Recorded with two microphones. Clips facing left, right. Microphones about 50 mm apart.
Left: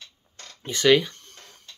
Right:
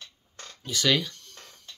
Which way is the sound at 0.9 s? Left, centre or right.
Left.